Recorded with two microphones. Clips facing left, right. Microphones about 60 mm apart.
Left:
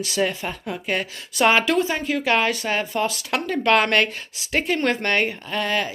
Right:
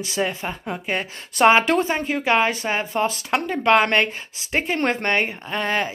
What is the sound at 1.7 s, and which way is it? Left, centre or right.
Speech, right.